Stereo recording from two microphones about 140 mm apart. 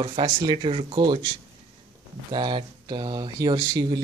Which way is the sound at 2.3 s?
35° right (ahead or behind).